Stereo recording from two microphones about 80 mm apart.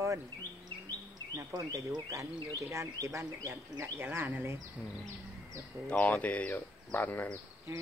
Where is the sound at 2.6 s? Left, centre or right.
Right.